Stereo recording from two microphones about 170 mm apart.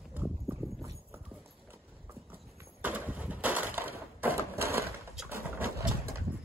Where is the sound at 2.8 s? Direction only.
10° right (ahead or behind).